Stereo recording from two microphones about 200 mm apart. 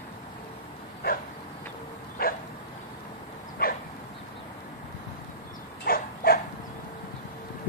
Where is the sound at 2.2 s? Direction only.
45° left (ahead or behind).